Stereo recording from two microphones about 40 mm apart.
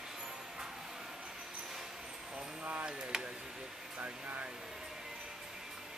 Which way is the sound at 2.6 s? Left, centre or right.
Right.